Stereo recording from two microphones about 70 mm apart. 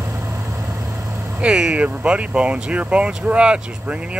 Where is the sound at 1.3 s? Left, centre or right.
Centre.